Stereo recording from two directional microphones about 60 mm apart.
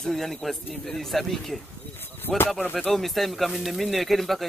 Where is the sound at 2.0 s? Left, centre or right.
Left.